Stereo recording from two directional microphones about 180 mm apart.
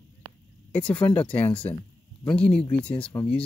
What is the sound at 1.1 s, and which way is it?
Speech, 10° left (ahead or behind).